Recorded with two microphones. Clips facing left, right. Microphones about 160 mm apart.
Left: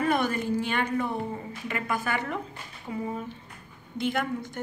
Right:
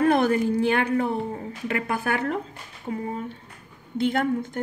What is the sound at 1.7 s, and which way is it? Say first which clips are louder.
Speech: right 4 dB; 60° right (ahead or behind).